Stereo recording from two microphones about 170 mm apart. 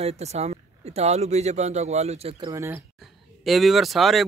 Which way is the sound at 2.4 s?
15° right (ahead or behind).